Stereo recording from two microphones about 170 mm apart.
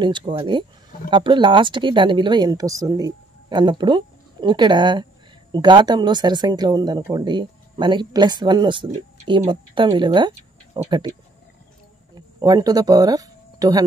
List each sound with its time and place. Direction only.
0.0 s speech: 25° right (ahead or behind)
12.4 s speech: 25° right (ahead or behind)